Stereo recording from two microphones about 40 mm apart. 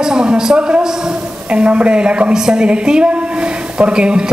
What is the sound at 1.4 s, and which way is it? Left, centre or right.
A woman's voice, right.